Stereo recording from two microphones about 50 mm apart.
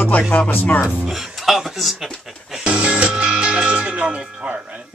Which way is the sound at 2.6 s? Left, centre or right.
Right.